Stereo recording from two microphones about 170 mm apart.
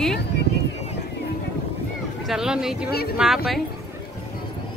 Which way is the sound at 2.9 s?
65° left (ahead or behind).